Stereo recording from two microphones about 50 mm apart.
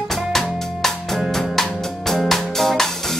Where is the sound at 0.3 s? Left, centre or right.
Centre.